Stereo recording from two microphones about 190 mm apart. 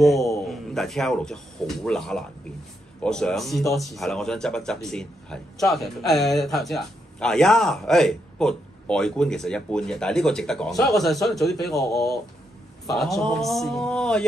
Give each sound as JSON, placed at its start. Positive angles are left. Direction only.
{"t": 0.0, "sound": "a man's voice", "side_deg": 0}
{"t": 11.7, "sound": "speech", "side_deg": 15}
{"t": 12.9, "sound": "speech", "side_deg": 0}